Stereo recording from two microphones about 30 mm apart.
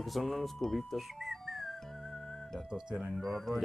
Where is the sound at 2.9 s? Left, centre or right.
Centre.